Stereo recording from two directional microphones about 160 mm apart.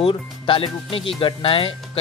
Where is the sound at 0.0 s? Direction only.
35° left (ahead or behind).